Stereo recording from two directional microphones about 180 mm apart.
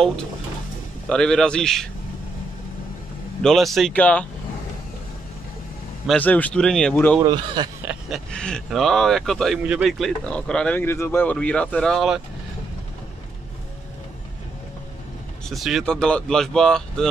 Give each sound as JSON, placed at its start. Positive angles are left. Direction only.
{"t": 1.0, "sound": "speech", "side_deg": 5}
{"t": 3.4, "sound": "speech", "side_deg": 0}
{"t": 6.0, "sound": "speech", "side_deg": 10}
{"t": 7.2, "sound": "speech", "side_deg": -25}
{"t": 7.8, "sound": "a sound", "side_deg": -5}
{"t": 8.3, "sound": "speech", "side_deg": 5}
{"t": 15.4, "sound": "speech", "side_deg": 0}